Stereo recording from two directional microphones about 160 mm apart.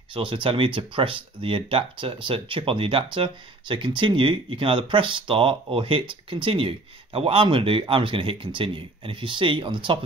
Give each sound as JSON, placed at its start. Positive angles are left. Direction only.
{"t": 0.1, "sound": "speech", "side_deg": -35}